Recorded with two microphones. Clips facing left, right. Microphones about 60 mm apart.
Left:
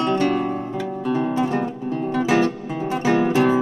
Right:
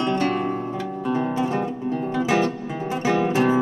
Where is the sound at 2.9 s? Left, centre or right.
Left.